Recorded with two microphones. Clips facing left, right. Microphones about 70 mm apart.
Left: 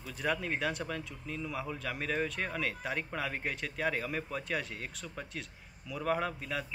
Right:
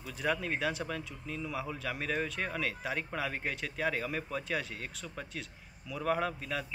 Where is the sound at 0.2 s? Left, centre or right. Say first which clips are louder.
Right 1 dB; centre.